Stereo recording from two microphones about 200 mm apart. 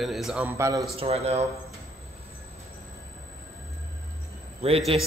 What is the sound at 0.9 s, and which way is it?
Speech, 30° right (ahead or behind).